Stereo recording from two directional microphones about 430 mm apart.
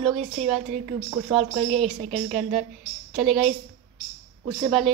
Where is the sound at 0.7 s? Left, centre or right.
Centre.